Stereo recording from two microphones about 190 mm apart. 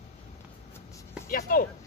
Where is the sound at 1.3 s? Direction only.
50° left (ahead or behind).